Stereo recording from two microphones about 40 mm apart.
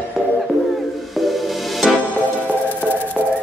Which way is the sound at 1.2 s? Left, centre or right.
Centre.